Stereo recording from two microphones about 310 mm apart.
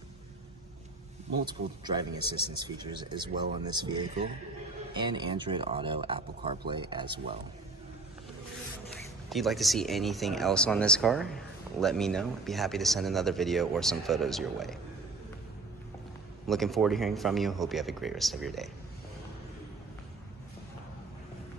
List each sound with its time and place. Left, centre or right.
1.4 s speech: centre
9.3 s speech: centre
16.4 s speech: centre